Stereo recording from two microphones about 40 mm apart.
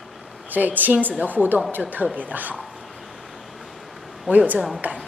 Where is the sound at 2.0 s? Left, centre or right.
Left.